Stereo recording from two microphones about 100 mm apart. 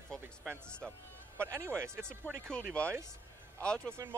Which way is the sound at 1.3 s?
25° right (ahead or behind).